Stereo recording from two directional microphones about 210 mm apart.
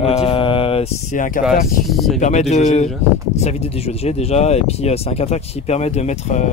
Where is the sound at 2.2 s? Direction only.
30° left (ahead or behind).